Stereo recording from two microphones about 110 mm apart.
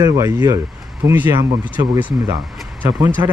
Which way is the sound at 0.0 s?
30° right (ahead or behind).